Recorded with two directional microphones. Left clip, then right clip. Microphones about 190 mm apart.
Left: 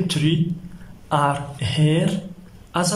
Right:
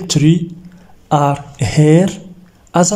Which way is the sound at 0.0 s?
25° right (ahead or behind).